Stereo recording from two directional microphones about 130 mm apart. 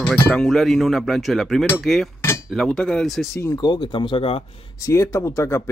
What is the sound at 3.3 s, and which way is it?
Speech, 25° left (ahead or behind).